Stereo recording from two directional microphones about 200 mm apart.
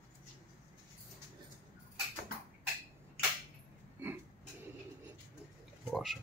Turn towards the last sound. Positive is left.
turn(degrees=0)  # may be behind; listen again after turning